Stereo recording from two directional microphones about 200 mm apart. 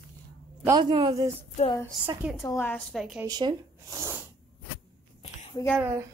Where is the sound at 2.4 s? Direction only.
10° left (ahead or behind).